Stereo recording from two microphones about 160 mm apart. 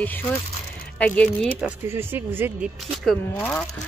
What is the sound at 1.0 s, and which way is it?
Speech, 10° left (ahead or behind).